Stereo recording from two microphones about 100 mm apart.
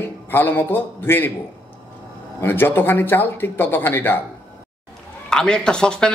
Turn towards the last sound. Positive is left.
turn(degrees=10)  # may be behind; listen again after turning